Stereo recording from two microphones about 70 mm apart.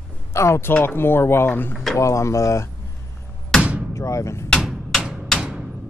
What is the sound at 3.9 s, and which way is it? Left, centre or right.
Speech, left.